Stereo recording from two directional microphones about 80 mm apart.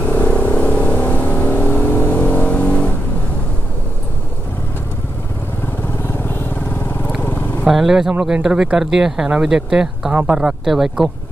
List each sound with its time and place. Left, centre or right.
0.0 s vehicle: centre
7.6 s speech: centre